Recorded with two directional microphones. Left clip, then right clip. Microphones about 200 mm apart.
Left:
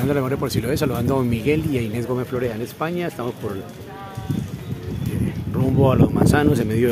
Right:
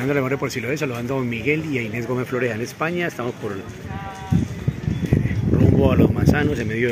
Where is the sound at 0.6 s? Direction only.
15° left (ahead or behind).